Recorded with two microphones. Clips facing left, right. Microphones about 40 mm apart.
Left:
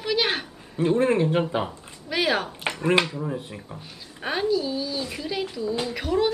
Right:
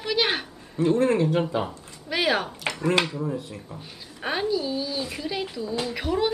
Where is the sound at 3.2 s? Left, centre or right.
Left.